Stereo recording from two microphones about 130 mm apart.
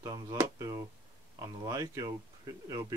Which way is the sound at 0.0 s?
25° right (ahead or behind).